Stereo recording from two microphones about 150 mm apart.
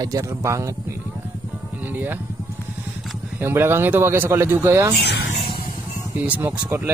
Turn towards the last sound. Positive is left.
turn(degrees=-15)  # may be behind; listen again after turning